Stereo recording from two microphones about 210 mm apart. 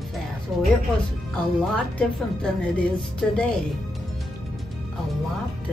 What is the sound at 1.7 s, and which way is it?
Speech, 5° left (ahead or behind).